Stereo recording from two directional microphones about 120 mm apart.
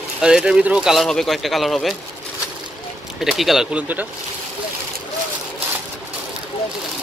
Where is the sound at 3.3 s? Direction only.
Centre (ahead or behind).